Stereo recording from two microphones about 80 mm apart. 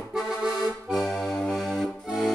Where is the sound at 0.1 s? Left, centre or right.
Centre.